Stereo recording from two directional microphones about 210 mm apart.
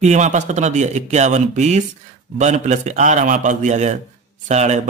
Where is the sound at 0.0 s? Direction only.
35° right (ahead or behind).